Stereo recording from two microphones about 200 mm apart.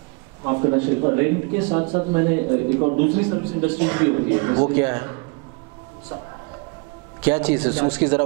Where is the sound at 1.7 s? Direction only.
30° right (ahead or behind).